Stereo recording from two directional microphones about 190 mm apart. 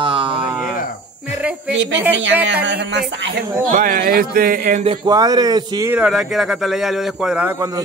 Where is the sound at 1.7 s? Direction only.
70° right (ahead or behind).